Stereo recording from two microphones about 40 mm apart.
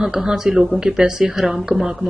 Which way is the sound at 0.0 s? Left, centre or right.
Centre.